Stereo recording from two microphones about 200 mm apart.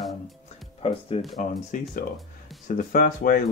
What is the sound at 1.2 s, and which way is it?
Speech, centre (ahead or behind).